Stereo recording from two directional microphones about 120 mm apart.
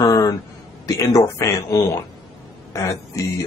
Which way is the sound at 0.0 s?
30° left (ahead or behind).